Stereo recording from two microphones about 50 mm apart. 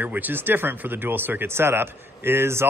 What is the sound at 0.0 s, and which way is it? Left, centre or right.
Speech, right.